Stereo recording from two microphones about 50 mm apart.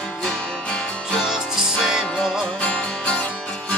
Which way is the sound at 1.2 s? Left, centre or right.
Centre.